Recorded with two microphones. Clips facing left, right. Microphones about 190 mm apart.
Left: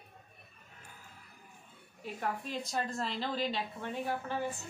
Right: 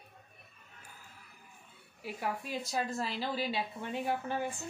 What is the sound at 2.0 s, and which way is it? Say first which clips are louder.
A woman's voice: even; 5° right (ahead or behind).